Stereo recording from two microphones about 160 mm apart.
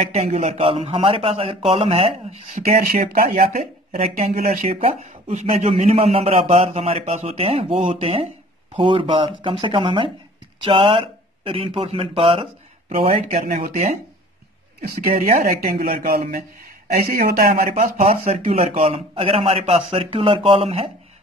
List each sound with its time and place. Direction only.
0.0 s a man's voice: 45° right (ahead or behind)
2.5 s speech: 70° right (ahead or behind)
4.4 s a man's voice: 45° right (ahead or behind)
13.1 s speech: 50° right (ahead or behind)
14.8 s speech: 65° right (ahead or behind)
15.1 s speech: 45° right (ahead or behind)
15.4 s speech: 70° right (ahead or behind)
17.9 s a man's voice: 45° right (ahead or behind)